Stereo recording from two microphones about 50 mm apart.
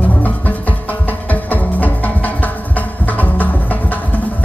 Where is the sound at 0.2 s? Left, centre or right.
Left.